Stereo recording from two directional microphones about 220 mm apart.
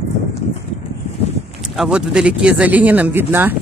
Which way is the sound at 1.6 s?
5° right (ahead or behind).